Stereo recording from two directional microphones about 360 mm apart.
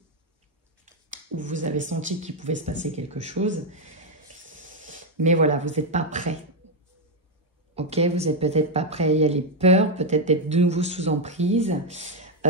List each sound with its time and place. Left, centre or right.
1.1 s speech: right
4.5 s hiss: right
5.2 s speech: centre
6.6 s a sound: centre
7.7 s speech: centre